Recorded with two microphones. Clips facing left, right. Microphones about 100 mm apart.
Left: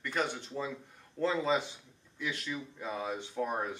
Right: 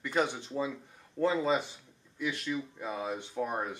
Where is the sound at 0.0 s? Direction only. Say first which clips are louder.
Right 3 dB; 10° right (ahead or behind).